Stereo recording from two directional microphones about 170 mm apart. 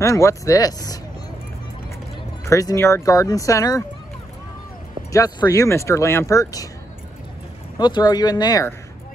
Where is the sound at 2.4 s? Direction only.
20° left (ahead or behind).